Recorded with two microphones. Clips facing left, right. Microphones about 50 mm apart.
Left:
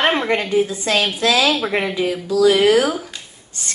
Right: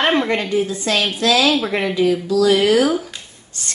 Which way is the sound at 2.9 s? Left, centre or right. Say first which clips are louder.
Right 3 dB; centre.